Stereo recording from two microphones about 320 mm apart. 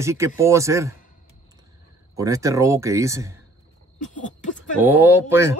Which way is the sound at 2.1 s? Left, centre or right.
Centre.